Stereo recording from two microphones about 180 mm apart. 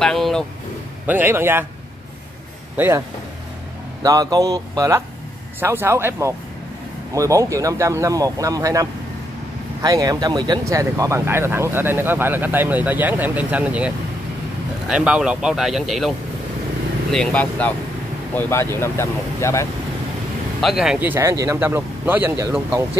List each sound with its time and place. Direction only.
0.0 s speech: centre (ahead or behind)
1.0 s speech: 10° right (ahead or behind)
2.8 s speech: 10° right (ahead or behind)
4.0 s speech: 20° right (ahead or behind); by 16.1 s centre (ahead or behind)
17.1 s speech: 5° left (ahead or behind)
20.6 s speech: 5° right (ahead or behind)